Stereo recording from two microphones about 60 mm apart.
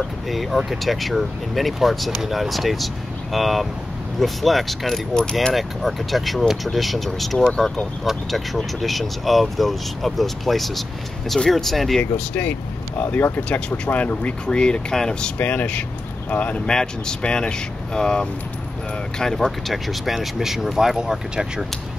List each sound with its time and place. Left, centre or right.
0.3 s speech: centre
12.0 s speech: left
15.3 s speech: left
16.6 s speech: centre